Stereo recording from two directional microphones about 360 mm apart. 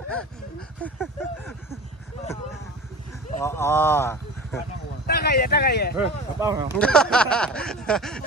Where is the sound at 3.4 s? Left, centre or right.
Centre.